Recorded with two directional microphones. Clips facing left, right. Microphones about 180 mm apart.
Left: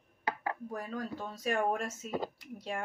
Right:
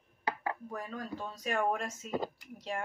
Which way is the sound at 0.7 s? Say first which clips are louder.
Left 2 dB; 35° left (ahead or behind).